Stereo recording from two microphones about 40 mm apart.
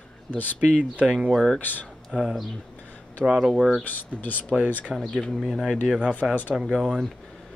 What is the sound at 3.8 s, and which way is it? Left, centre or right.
Speech, left.